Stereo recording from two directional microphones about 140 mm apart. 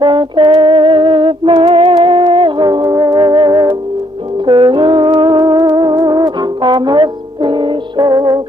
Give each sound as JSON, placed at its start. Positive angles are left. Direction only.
{"t": 0.0, "sound": "music", "side_deg": -35}